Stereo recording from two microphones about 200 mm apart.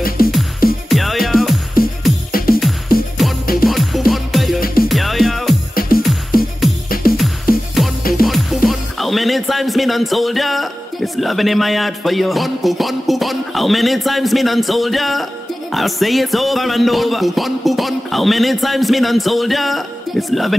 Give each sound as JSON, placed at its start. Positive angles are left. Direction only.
{"t": 0.8, "sound": "music", "side_deg": 0}
{"t": 2.3, "sound": "music", "side_deg": 45}
{"t": 3.2, "sound": "music", "side_deg": 0}
{"t": 4.6, "sound": "music", "side_deg": 45}
{"t": 4.8, "sound": "music", "side_deg": 0}
{"t": 5.8, "sound": "music", "side_deg": 45}
{"t": 8.1, "sound": "speech", "side_deg": 0}